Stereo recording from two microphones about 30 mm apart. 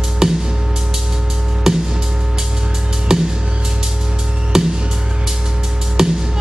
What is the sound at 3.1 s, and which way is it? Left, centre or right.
Music, centre.